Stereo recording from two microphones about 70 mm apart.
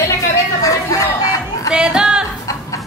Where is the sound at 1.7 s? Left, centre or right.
Centre.